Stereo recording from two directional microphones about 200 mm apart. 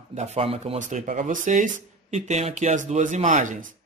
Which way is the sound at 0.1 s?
35° right (ahead or behind).